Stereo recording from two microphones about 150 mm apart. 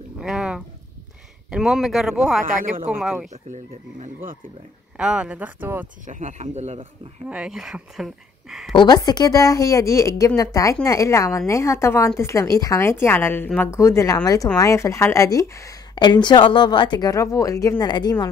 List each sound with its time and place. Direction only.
0.2 s a sound: 5° right (ahead or behind)
1.5 s speech: 5° right (ahead or behind)
3.4 s speech: 55° right (ahead or behind)
4.9 s speech: 5° right (ahead or behind)
6.0 s speech: 55° right (ahead or behind)
7.2 s speech: 5° right (ahead or behind)
8.7 s a woman's voice: 25° left (ahead or behind)